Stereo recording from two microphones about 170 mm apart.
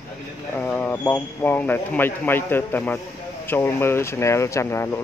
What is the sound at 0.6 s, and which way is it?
Speech, 10° left (ahead or behind).